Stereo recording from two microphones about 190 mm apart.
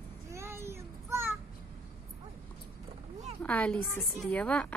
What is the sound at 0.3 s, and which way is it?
Child singing, 15° right (ahead or behind).